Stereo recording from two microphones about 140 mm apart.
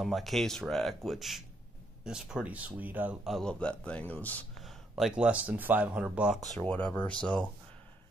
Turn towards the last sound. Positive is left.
turn(degrees=5)  # may be behind; listen again after turning